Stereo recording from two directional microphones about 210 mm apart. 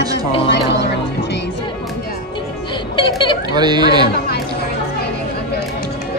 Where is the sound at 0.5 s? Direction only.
55° left (ahead or behind).